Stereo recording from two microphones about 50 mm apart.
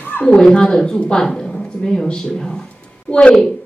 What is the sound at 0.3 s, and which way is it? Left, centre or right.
A woman's voice, centre.